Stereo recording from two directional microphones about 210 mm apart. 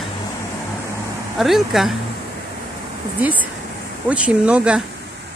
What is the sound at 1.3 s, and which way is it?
Speech, centre (ahead or behind).